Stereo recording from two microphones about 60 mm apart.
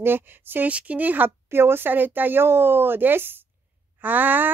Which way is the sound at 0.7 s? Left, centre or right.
Right.